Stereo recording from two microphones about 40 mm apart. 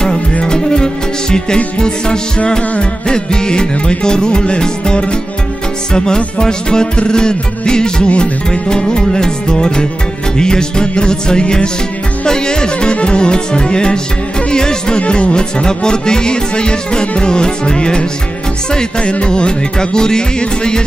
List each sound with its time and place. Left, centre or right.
0.0 s music: centre